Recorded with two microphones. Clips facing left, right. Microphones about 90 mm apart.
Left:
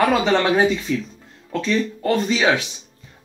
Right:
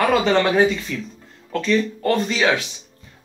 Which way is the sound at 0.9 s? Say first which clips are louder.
Left 5 dB; 15° left (ahead or behind).